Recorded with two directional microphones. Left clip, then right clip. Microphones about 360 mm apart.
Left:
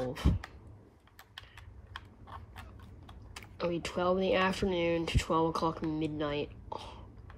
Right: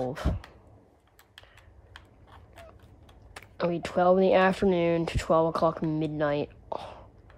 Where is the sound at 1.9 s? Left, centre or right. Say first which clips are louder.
Left 5 dB; centre.